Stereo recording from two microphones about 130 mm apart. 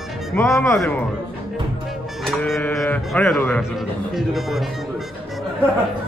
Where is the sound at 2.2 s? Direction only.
5° left (ahead or behind).